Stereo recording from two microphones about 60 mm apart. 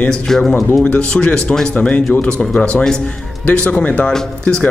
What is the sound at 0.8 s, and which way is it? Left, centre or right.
Speech, centre.